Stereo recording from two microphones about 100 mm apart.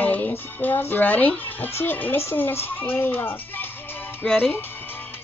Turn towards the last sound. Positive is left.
turn(degrees=20)  # may be behind; listen again after turning